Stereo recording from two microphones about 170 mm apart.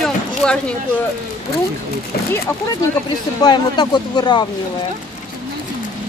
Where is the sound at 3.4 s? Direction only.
25° left (ahead or behind).